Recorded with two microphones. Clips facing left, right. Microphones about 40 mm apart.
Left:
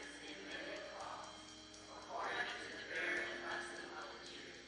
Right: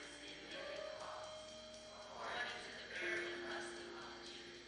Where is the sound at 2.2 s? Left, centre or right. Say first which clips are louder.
Left 2 dB; centre.